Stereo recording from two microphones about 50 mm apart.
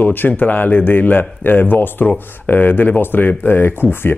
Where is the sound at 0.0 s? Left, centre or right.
Left.